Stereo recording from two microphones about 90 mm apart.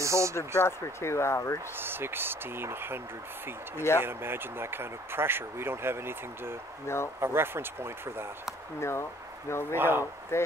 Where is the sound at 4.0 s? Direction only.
25° right (ahead or behind).